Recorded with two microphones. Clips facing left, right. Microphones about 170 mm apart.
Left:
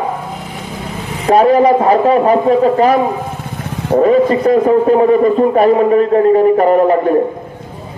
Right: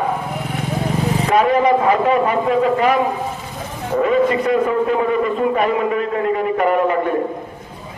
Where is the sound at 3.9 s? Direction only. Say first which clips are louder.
Left 6 dB; 40° left (ahead or behind).